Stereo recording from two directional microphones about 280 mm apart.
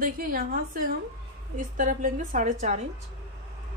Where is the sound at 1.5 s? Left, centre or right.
Right.